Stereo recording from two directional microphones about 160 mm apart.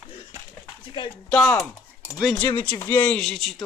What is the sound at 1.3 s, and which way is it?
Speech, 5° left (ahead or behind).